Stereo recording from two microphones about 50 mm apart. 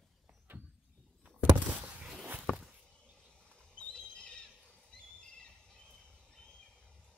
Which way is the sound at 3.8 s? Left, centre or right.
Centre.